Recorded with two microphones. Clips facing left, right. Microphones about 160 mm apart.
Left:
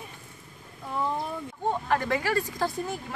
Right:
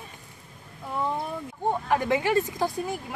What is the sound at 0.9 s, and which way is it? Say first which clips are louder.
Speech: right 1 dB; 5° right (ahead or behind).